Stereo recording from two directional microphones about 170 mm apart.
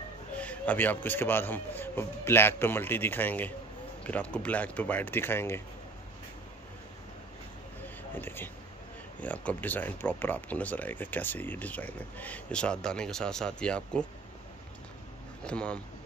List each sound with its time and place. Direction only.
0.4 s speech: 10° left (ahead or behind)
7.8 s a sound: 10° left (ahead or behind)
9.2 s speech: 10° left (ahead or behind)
15.4 s speech: 5° left (ahead or behind)